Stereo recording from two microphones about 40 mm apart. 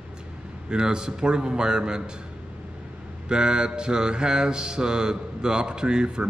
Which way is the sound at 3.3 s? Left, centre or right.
Centre.